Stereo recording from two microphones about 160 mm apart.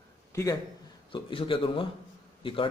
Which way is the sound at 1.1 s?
30° left (ahead or behind).